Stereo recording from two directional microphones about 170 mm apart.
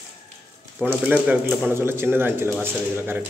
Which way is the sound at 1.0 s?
10° right (ahead or behind).